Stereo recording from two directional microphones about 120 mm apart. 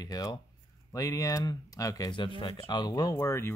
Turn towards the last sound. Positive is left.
turn(degrees=20)  # may be behind; listen again after turning